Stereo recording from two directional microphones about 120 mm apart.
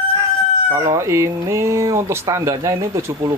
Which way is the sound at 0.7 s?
25° right (ahead or behind).